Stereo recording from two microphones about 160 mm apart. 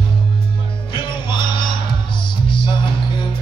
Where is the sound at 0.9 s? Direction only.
30° left (ahead or behind).